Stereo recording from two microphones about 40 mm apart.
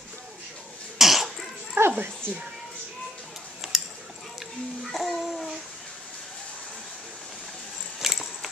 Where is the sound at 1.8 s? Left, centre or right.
Right.